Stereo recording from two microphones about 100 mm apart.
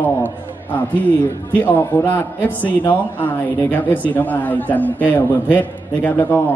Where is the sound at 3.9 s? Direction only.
15° left (ahead or behind).